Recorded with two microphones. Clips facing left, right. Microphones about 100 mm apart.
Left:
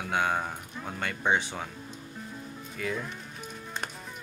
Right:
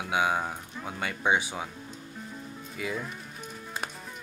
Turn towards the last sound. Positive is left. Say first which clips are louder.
# even
turn(degrees=-5)  # may be behind; listen again after turning